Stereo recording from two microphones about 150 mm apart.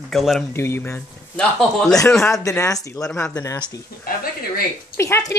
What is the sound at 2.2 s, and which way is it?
Speech, 20° left (ahead or behind).